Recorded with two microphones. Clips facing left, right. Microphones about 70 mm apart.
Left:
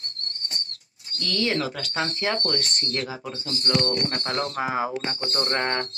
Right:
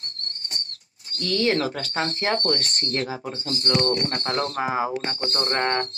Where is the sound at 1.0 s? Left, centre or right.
Right.